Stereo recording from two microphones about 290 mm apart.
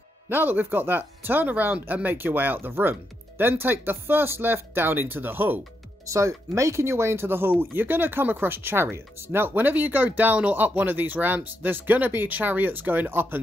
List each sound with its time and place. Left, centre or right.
0.3 s speech: centre